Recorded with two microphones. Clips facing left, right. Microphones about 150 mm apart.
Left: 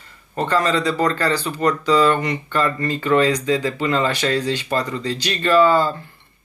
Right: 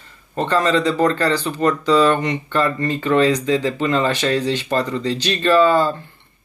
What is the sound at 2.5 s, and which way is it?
Speech, 10° right (ahead or behind).